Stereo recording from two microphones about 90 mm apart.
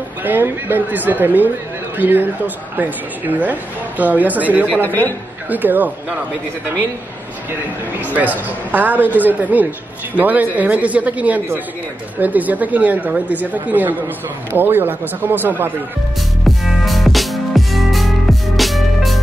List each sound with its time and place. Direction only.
0.2 s speech: 20° right (ahead or behind)
4.8 s speech: 20° left (ahead or behind)
5.5 s speech: 20° right (ahead or behind)
8.0 s speech: 20° right (ahead or behind)
16.4 s music: centre (ahead or behind)